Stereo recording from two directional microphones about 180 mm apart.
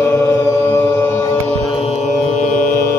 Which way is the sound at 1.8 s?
35° left (ahead or behind).